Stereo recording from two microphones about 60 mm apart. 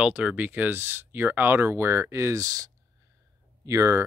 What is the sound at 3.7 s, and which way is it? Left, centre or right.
Speech, right.